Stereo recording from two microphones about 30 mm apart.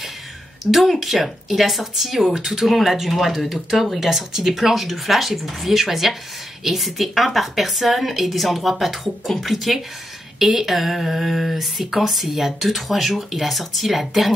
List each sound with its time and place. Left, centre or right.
0.7 s speech: centre
2.6 s speech: centre